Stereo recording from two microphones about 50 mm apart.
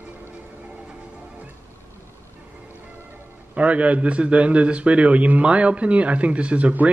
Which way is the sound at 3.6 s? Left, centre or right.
Right.